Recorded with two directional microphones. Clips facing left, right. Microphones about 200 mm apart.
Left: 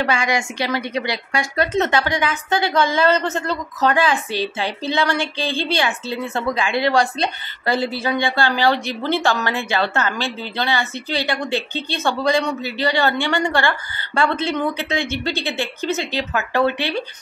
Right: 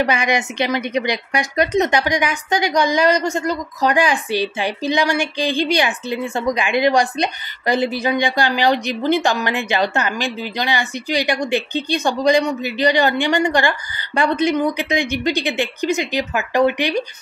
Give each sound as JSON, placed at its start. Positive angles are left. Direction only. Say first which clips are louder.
{"t": 0.0, "sound": "a woman's voice", "louder": "right 2 dB", "side_deg": -20}